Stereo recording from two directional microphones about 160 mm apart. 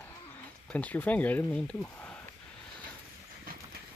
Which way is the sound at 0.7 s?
10° left (ahead or behind).